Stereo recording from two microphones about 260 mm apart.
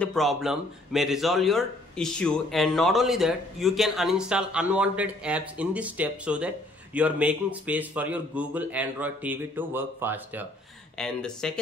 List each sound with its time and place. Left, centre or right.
0.0 s a man's voice: centre
11.0 s a man's voice: centre